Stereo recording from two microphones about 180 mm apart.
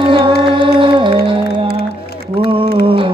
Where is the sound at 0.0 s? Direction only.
25° right (ahead or behind).